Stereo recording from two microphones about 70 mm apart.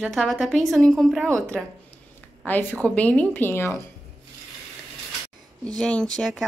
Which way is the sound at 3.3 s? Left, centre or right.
Left.